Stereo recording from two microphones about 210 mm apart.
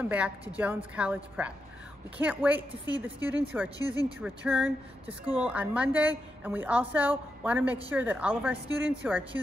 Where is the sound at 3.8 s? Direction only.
20° left (ahead or behind).